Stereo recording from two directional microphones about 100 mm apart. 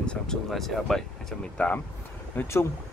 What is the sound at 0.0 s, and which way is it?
Speech, 10° left (ahead or behind).